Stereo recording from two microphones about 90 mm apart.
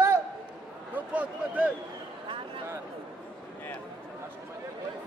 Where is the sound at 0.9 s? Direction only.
15° right (ahead or behind).